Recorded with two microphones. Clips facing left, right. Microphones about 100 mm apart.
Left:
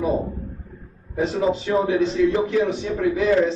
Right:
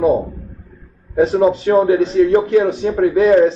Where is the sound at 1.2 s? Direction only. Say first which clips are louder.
Right 8 dB; 35° right (ahead or behind).